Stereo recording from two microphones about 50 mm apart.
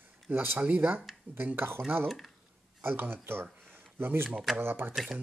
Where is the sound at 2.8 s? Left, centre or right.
Right.